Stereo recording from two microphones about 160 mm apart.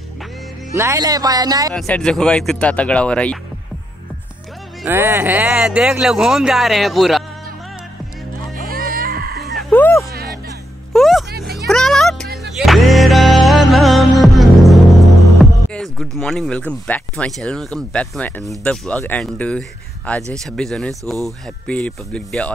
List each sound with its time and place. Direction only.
0.7 s speech: 20° right (ahead or behind)
1.7 s speech: 5° left (ahead or behind)
4.8 s speech: 15° right (ahead or behind)
8.4 s music: 65° right (ahead or behind)
9.5 s a sound: 5° left (ahead or behind)
10.9 s music: centre (ahead or behind)
15.7 s speech: centre (ahead or behind)